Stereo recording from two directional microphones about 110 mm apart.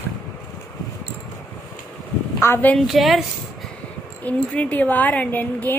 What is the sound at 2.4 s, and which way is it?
Speech, 20° left (ahead or behind).